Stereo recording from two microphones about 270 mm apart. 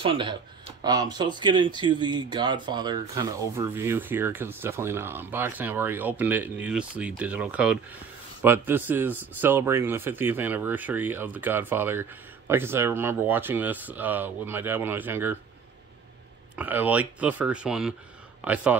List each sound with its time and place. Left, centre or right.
0.0 s speech: centre
16.5 s speech: centre